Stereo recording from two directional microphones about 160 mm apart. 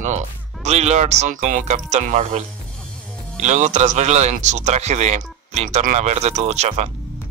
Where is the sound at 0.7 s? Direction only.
45° right (ahead or behind).